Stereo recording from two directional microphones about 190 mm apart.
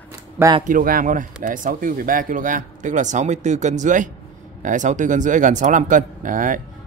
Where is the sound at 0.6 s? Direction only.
45° right (ahead or behind).